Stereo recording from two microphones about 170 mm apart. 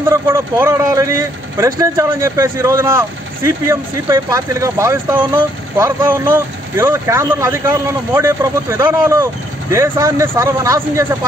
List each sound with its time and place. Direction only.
0.1 s speech: 15° right (ahead or behind)